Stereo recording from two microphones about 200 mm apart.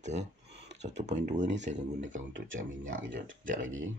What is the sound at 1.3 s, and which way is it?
Speech, 60° right (ahead or behind).